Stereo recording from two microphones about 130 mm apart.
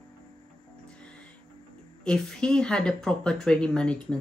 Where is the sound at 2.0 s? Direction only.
5° left (ahead or behind).